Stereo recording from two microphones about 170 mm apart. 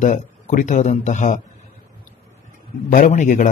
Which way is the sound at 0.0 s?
50° left (ahead or behind).